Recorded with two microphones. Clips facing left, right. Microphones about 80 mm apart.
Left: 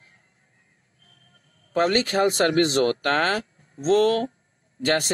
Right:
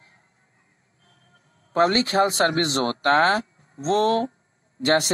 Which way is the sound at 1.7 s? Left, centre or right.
Right.